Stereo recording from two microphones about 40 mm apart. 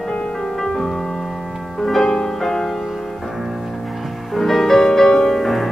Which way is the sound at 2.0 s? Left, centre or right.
Left.